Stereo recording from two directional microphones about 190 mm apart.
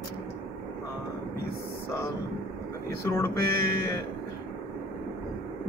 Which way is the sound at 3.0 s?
10° left (ahead or behind).